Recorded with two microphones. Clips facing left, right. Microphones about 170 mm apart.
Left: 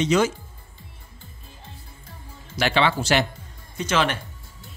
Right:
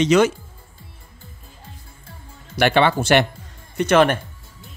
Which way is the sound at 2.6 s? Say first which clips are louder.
Right 5 dB; 50° right (ahead or behind).